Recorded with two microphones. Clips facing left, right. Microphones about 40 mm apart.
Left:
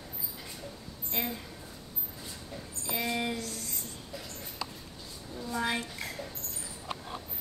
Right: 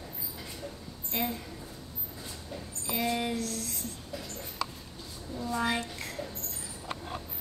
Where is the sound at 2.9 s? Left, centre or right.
Centre.